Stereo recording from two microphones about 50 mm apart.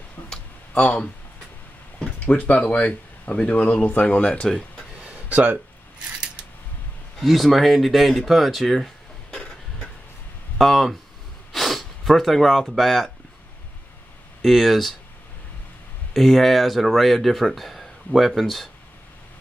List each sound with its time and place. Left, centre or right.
2.1 s speech: left
5.0 s a sound: right
7.2 s speech: centre
10.6 s speech: centre
14.4 s speech: centre
16.1 s speech: centre